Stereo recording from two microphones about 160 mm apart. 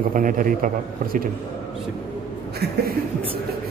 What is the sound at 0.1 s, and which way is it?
Speech, 55° right (ahead or behind).